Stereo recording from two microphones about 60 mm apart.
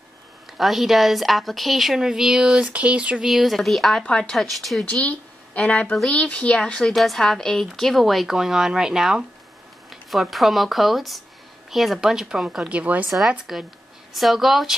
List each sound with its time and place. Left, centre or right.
0.6 s a woman's voice: centre
2.6 s a sound: right
3.3 s a woman's voice: centre
4.0 s a woman's voice: centre
5.0 s a woman's voice: left
6.9 s a woman's voice: centre
12.6 s a sound: right
13.5 s a woman's voice: centre